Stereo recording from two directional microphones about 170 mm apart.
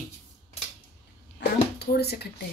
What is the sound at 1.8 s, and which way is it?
Speech, 70° left (ahead or behind).